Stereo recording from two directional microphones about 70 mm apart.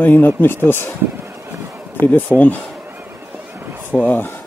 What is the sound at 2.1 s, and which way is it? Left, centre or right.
Speech, left.